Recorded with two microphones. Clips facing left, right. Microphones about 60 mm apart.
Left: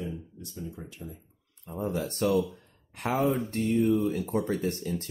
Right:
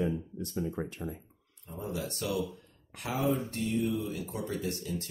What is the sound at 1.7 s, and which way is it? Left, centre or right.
Speech, left.